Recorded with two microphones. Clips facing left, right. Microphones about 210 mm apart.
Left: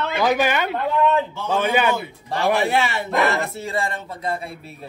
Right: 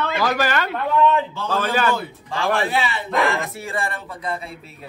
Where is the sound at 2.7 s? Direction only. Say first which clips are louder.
Left 2 dB; 45° left (ahead or behind).